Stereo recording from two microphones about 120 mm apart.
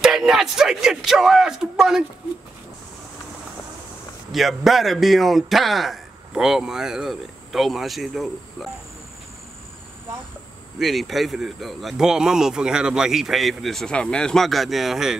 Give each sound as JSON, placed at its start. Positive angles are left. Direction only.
{"t": 0.0, "sound": "a man's voice", "side_deg": -5}
{"t": 4.3, "sound": "a man's voice", "side_deg": 0}
{"t": 10.8, "sound": "a man's voice", "side_deg": 0}